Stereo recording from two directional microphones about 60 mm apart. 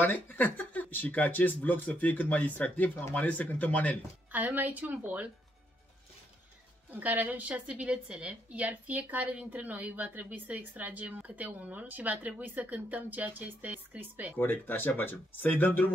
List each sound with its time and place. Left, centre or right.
0.0 s speech: left
4.3 s a woman's voice: right
6.9 s a woman's voice: right
14.4 s speech: left